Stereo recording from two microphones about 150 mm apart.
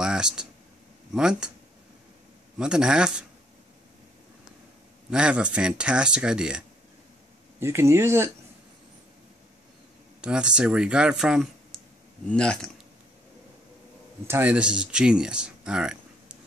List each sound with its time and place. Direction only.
0.0 s a sound: 5° right (ahead or behind)
1.1 s speech: 5° right (ahead or behind)
2.6 s speech: 5° right (ahead or behind)
5.1 s speech: 5° right (ahead or behind)
7.6 s speech: 20° right (ahead or behind)
10.2 s speech: 5° right (ahead or behind)
14.2 s speech: 15° right (ahead or behind)